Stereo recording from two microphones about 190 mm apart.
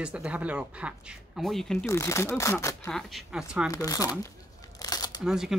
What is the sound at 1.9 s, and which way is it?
Speech, 15° left (ahead or behind).